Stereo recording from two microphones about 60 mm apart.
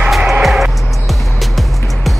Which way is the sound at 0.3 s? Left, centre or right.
Centre.